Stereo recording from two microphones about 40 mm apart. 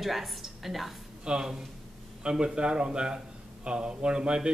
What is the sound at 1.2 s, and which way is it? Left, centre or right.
A man's voice, centre.